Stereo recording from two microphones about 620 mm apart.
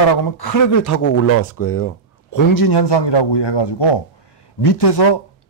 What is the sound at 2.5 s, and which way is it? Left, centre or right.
A man's voice, left.